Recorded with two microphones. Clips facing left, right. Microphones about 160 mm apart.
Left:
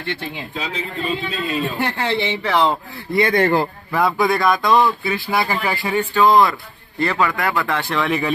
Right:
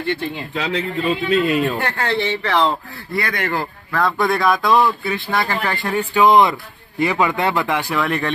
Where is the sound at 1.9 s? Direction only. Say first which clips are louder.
Even; 10° left (ahead or behind).